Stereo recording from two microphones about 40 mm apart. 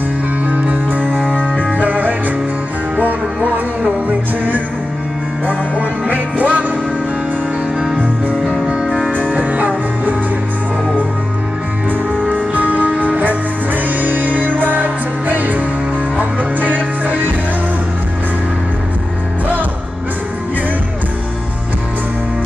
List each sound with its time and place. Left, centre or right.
0.5 s music: right
1.3 s music: left
1.8 s music: right
3.4 s music: right
8.6 s music: right
9.3 s music: right
12.5 s music: right